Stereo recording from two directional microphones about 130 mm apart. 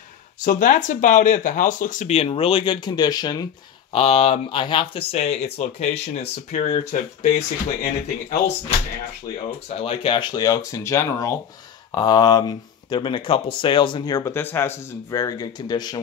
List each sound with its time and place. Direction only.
0.5 s speech: 85° left
2.1 s speech: 50° left (ahead or behind); by 3.4 s 30° left (ahead or behind)
3.9 s speech: 50° left (ahead or behind)
9.8 s speech: 45° left (ahead or behind); by 14.3 s 30° left (ahead or behind)
14.3 s speech: 15° left (ahead or behind)